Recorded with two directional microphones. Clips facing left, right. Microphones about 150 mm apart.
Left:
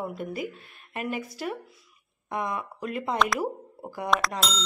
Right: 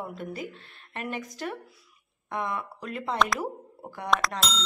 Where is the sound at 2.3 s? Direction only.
15° left (ahead or behind).